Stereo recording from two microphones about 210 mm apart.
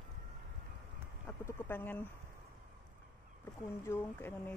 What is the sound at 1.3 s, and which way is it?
Speech, 10° left (ahead or behind).